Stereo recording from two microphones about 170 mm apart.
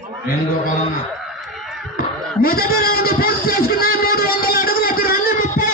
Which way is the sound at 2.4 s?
60° left (ahead or behind).